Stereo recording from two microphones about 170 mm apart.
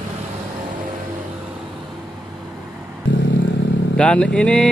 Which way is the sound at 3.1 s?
90° left.